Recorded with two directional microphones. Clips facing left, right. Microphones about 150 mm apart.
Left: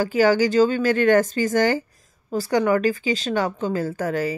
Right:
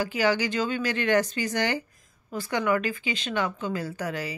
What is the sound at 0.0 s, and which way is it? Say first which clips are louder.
Speech: left 7 dB; 45° left (ahead or behind).